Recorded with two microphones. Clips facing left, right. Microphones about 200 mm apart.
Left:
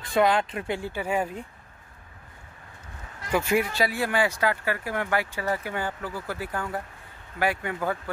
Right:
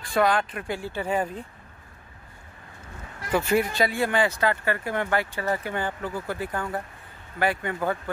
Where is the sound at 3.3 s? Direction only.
10° left (ahead or behind).